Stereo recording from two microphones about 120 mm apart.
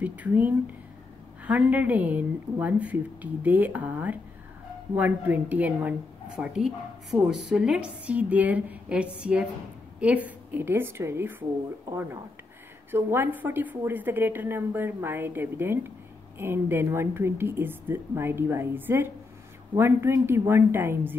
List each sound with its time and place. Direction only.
0.0 s a woman's voice: 15° right (ahead or behind)